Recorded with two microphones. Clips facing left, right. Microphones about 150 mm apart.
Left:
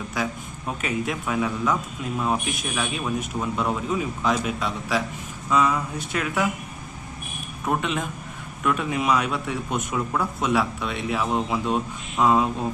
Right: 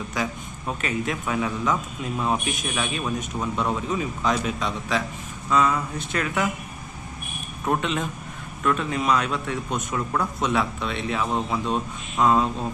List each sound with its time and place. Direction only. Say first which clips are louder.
0.1 s a man's voice: left 1 dB; centre (ahead or behind)
7.6 s a man's voice: right 1 dB; 5° left (ahead or behind)